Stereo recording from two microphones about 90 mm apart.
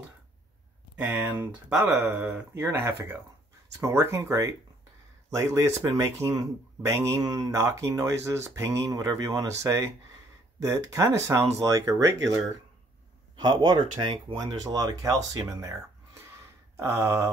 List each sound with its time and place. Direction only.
1.0 s speech: 20° right (ahead or behind)
1.9 s speech: 10° right (ahead or behind)
2.5 s speech: 25° right (ahead or behind); by 12.4 s 40° right (ahead or behind)
13.4 s speech: 55° right (ahead or behind)
14.3 s speech: 45° right (ahead or behind)
16.7 s speech: 30° right (ahead or behind)